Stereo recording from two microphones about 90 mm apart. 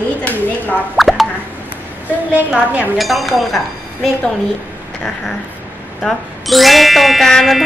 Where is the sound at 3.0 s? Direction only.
Centre (ahead or behind).